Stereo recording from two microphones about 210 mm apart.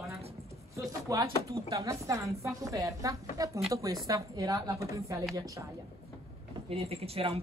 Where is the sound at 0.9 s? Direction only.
15° right (ahead or behind).